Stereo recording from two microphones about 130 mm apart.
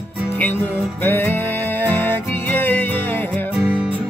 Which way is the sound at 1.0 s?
15° left (ahead or behind).